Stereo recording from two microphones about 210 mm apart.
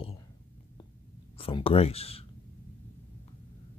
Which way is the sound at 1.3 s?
25° left (ahead or behind).